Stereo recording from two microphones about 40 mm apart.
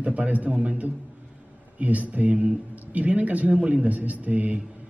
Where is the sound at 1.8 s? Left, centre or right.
Right.